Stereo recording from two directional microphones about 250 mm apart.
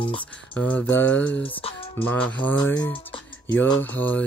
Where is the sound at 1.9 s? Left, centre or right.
Centre.